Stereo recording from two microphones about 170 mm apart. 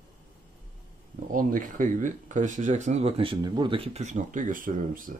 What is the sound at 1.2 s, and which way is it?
Speech, 50° right (ahead or behind).